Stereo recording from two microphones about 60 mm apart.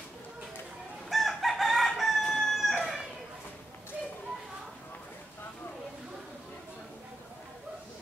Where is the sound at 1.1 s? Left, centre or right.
Centre.